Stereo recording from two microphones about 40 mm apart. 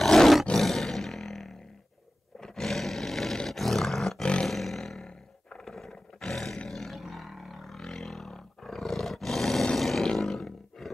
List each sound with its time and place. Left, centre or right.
0.0 s roar: centre
4.2 s roar: left
4.5 s roar: centre